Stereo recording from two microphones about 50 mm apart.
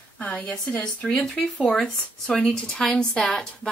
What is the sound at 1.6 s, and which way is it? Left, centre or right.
A woman's voice, centre.